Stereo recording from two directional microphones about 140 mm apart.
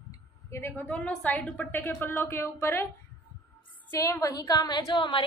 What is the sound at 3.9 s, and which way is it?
A woman's voice, 20° left (ahead or behind).